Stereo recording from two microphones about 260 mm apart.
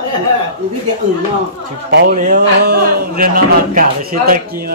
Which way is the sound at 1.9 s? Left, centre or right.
Right.